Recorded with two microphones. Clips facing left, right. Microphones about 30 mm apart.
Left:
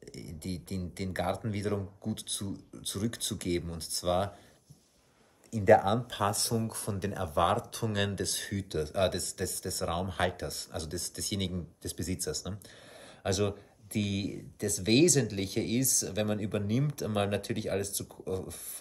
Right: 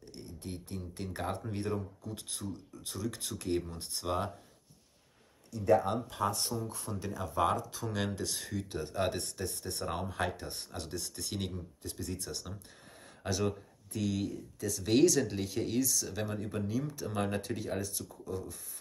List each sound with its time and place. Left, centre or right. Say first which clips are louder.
0.0 s a sound: left 3 dB; left
0.5 s speech: left 4 dB; left
5.5 s speech: left 5 dB; left
6.6 s speech: left 4 dB; left
9.1 s speech: left 2 dB; left
9.8 s speech: left 4 dB; left
13.2 s speech: left 3 dB; left
15.8 s speech: left 1 dB; left
16.2 s speech: left 5 dB; left